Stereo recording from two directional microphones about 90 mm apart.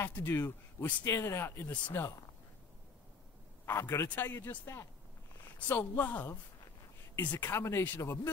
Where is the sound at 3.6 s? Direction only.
30° left (ahead or behind).